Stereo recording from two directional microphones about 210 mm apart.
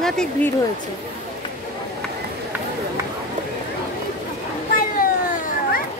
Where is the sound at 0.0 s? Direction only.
5° left (ahead or behind).